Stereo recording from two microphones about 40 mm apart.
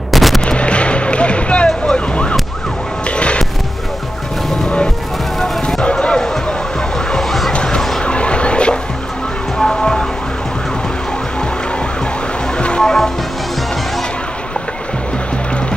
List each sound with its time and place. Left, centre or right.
0.1 s gunshot: centre
0.5 s music: left
2.0 s emergency vehicle: left
3.1 s music: left
5.4 s music: centre
5.9 s music: left
7.1 s vehicle: centre
7.5 s vehicle: left
9.6 s music: centre
12.5 s music: left
12.8 s music: centre